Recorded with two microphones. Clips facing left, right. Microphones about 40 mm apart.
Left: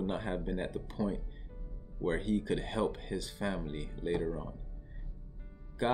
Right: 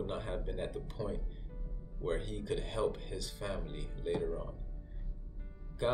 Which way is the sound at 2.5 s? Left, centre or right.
Left.